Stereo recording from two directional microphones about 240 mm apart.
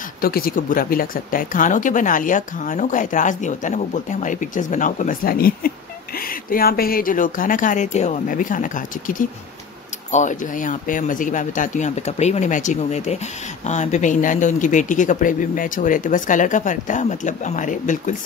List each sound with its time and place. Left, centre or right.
0.2 s speech: left